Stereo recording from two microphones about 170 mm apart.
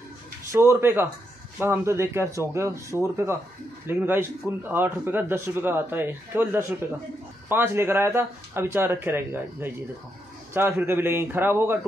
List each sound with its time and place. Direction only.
0.5 s speech: 15° right (ahead or behind)